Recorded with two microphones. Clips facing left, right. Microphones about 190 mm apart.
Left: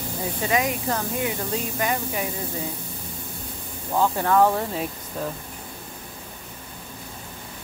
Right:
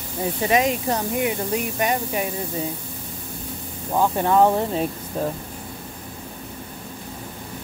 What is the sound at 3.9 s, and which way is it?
Speech, 20° right (ahead or behind).